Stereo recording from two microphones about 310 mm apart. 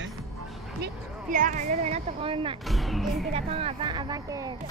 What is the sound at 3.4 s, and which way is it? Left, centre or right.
Speech, centre.